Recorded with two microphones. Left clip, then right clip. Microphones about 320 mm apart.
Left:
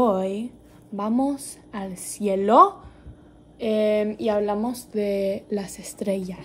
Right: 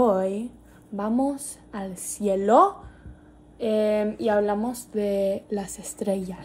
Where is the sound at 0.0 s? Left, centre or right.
Centre.